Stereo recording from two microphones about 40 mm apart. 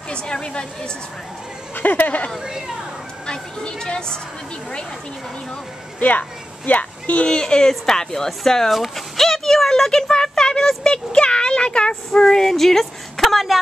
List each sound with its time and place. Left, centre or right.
0.1 s speech: left
1.8 s speech: left
3.3 s speech: left
5.9 s speech: left
7.2 s speech: left
8.6 s a sound: centre
10.8 s speech: left
12.1 s speech: centre